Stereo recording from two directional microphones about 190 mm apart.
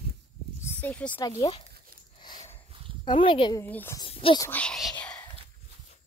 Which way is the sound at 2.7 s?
30° right (ahead or behind).